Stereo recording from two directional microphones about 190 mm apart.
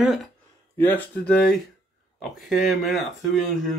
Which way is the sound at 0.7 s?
10° left (ahead or behind).